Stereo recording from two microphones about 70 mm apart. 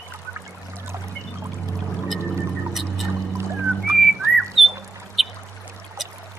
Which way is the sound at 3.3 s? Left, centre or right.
Right.